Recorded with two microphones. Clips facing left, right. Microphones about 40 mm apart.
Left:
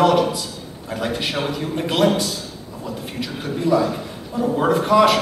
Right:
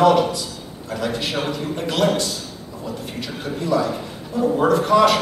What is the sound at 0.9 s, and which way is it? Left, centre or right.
Speech, centre.